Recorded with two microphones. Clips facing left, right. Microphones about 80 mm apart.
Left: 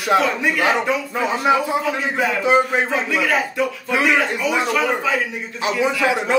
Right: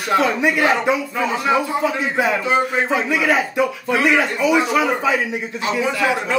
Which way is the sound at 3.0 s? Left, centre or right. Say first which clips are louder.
Right 2 dB; centre.